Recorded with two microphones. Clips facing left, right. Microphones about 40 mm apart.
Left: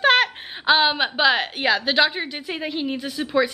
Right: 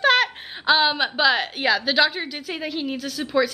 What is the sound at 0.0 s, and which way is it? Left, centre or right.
Speech, centre.